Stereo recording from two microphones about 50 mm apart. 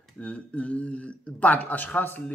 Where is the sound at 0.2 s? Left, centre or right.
Left.